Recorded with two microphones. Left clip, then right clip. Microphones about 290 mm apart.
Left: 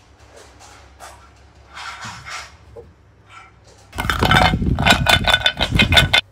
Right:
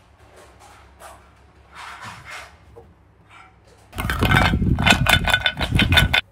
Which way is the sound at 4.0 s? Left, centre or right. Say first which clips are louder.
Left 4 dB; centre.